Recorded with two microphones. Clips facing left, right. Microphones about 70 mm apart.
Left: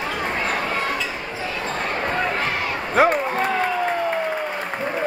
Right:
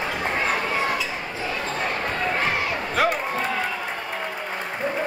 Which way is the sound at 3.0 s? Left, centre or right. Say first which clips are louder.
Left 5 dB; left.